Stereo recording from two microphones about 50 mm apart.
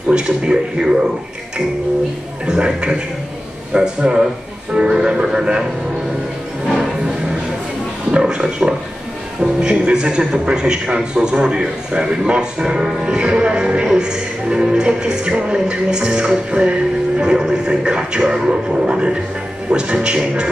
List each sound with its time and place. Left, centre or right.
0.1 s a man's voice: centre
2.4 s a man's voice: centre
8.1 s a sound: centre
9.4 s a man's voice: centre